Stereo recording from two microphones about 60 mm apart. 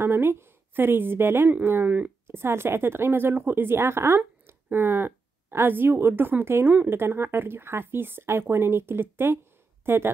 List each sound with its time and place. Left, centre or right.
0.0 s a woman's voice: right
2.2 s speech: right